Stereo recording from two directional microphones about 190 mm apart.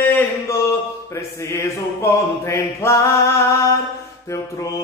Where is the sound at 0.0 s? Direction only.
10° left (ahead or behind).